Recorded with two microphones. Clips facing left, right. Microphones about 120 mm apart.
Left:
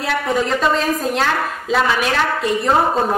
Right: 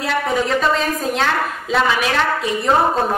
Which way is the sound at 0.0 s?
Centre (ahead or behind).